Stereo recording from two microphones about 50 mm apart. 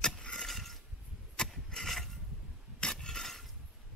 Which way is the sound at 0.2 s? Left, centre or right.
Centre.